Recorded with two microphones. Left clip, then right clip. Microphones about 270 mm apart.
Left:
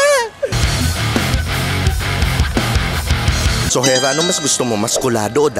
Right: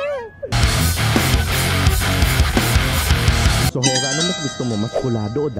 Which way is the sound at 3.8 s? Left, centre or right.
Centre.